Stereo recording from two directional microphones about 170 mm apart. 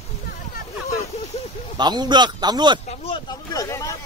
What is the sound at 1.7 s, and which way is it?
Speech, 25° right (ahead or behind).